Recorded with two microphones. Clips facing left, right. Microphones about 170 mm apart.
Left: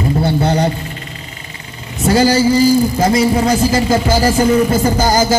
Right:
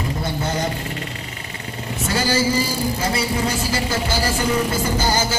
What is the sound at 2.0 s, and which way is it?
A woman's voice, 40° left (ahead or behind).